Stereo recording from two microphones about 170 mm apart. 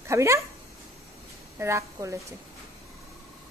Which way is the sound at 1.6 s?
15° right (ahead or behind).